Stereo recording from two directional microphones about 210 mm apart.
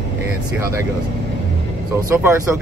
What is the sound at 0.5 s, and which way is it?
Speech, 15° right (ahead or behind).